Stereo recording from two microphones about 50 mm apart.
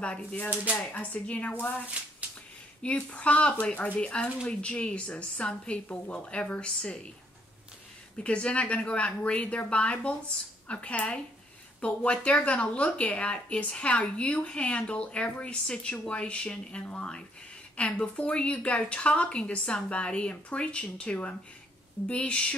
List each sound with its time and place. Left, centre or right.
0.0 s speech: left
3.1 s speech: left
8.2 s speech: left